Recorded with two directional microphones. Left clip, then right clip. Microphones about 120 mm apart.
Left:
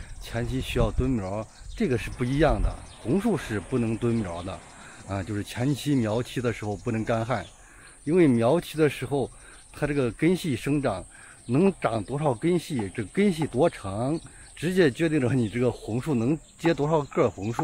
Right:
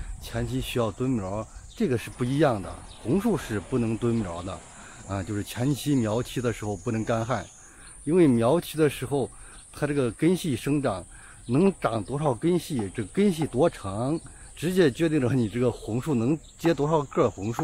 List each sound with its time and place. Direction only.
0.2 s speech: 15° right (ahead or behind)